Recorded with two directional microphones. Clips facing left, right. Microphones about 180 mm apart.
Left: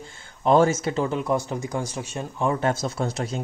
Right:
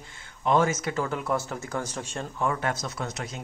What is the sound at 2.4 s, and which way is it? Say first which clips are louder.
Speech: left 5 dB; 25° left (ahead or behind).